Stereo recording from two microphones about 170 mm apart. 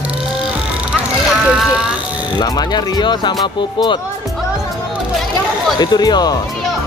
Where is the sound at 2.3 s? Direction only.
25° left (ahead or behind).